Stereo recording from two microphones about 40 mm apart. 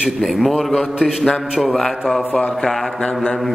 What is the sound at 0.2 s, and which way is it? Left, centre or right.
A man's voice, centre.